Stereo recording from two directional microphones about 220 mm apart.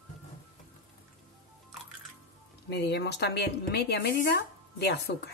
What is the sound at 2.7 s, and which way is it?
A woman's voice, 50° left (ahead or behind).